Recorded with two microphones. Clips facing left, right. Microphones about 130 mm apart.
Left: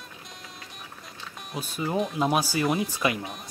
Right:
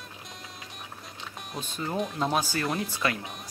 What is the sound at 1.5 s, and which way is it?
Speech, 10° left (ahead or behind).